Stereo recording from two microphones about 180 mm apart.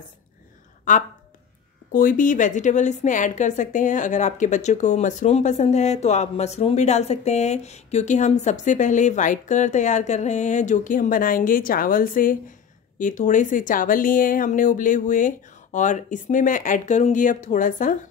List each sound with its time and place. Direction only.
0.9 s a woman's voice: 45° left (ahead or behind)